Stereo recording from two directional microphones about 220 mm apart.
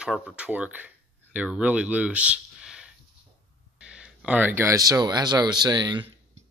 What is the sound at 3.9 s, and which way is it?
Speech, 5° right (ahead or behind).